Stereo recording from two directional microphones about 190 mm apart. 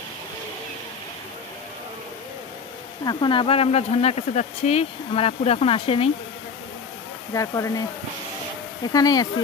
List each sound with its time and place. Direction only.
3.1 s speech: 25° left (ahead or behind)
7.3 s speech: 15° left (ahead or behind)
8.9 s speech: 20° left (ahead or behind)